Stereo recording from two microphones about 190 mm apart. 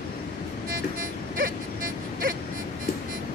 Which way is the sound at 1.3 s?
45° right (ahead or behind).